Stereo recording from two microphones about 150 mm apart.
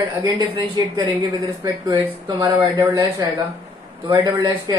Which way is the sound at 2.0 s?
15° right (ahead or behind).